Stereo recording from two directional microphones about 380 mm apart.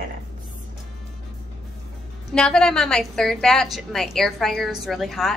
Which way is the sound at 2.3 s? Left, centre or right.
Centre.